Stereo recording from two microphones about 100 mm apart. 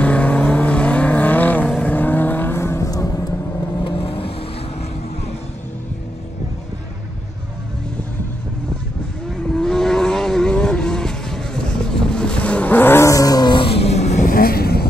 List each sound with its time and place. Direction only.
0.0 s vehicle: 10° left (ahead or behind); by 3.7 s 35° left (ahead or behind)
3.8 s vehicle: 65° left (ahead or behind)
9.5 s vehicle: 5° left (ahead or behind); by 13.7 s 45° left (ahead or behind)
13.7 s vehicle: 85° left